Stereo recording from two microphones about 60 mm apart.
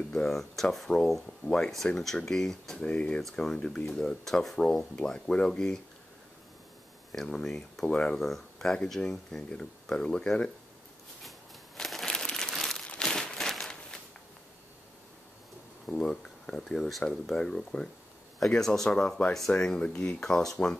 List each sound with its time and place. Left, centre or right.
0.1 s speech: centre
1.9 s speech: centre
3.2 s speech: centre
7.1 s speech: centre
8.2 s speech: centre
11.2 s crumpling: centre
12.8 s crumpling: centre
15.9 s speech: centre